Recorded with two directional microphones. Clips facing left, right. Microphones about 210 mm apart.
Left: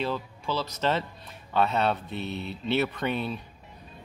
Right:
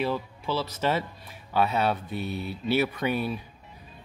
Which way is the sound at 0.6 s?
5° right (ahead or behind).